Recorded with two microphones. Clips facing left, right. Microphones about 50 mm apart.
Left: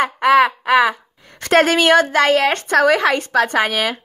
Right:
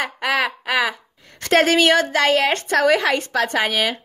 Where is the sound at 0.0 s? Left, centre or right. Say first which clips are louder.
Left 8 dB; centre.